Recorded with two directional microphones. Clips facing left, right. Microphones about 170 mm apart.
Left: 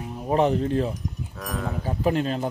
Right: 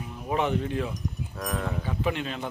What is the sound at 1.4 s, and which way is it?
Speech, centre (ahead or behind).